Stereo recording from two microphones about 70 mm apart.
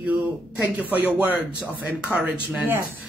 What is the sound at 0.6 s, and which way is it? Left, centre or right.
Speech, right.